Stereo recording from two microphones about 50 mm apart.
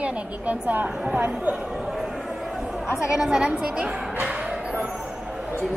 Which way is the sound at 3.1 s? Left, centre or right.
Centre.